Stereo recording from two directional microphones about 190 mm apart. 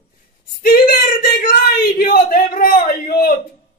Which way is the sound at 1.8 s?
50° left (ahead or behind).